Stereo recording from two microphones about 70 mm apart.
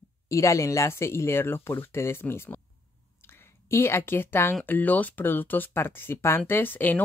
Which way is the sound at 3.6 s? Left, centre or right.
Left.